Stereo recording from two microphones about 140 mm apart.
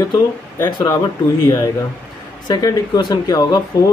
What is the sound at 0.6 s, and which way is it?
Speech, 30° left (ahead or behind).